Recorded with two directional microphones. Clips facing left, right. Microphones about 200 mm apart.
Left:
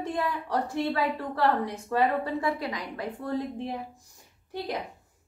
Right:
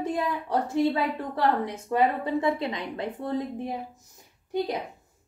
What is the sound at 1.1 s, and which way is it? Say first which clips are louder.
A woman's voice: right 1 dB; 20° right (ahead or behind).